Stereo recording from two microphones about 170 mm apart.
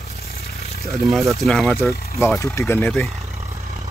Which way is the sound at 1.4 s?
Centre (ahead or behind).